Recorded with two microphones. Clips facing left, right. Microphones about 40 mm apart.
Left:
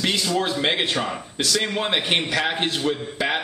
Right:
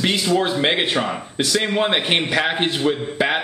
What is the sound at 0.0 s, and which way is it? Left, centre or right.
Speech, centre.